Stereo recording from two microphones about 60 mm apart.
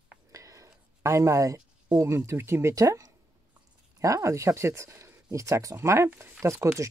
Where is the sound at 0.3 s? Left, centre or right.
Right.